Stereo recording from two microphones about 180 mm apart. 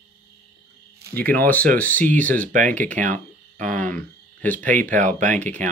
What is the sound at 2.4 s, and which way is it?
Speech, 45° right (ahead or behind).